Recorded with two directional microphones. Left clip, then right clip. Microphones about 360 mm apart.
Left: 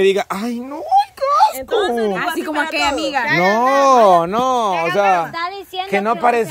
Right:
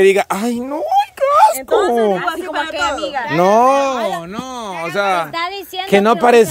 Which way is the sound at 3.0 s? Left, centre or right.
Left.